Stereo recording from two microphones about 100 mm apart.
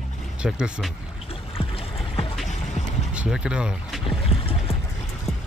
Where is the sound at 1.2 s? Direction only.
70° left (ahead or behind).